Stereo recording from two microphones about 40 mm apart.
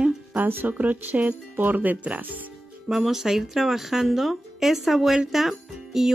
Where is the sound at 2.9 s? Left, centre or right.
Centre.